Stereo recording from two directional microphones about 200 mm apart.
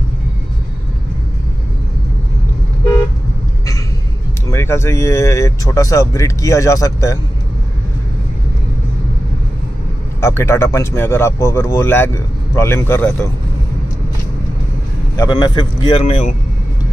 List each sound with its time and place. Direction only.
4.5 s speech: 15° left (ahead or behind)
10.2 s speech: 15° left (ahead or behind)
15.1 s speech: 20° left (ahead or behind)